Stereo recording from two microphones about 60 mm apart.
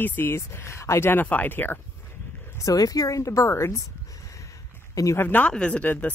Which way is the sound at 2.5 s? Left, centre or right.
Left.